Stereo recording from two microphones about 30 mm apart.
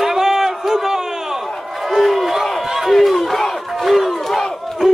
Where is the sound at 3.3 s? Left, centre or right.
Centre.